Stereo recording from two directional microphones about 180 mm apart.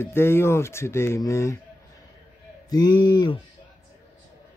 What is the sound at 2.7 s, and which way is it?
Speech, 25° left (ahead or behind).